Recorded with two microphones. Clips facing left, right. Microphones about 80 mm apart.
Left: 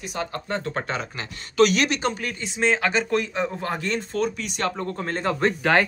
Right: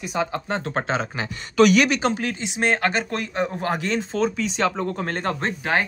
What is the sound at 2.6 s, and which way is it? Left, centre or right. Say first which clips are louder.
Speech: even; right.